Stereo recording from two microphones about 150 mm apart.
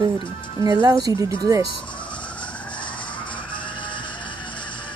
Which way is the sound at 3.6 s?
30° left (ahead or behind).